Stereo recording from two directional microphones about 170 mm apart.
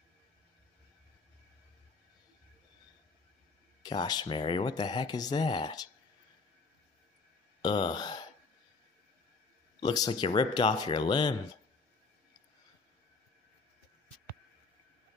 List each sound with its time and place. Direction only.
3.8 s speech: 25° left (ahead or behind)
7.6 s speech: 25° left (ahead or behind)
9.8 s speech: 25° left (ahead or behind)